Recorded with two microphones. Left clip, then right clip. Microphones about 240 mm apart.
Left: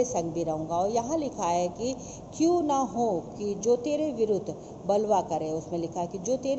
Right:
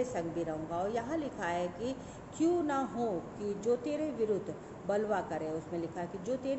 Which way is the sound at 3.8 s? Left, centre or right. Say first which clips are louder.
Left 7 dB; centre.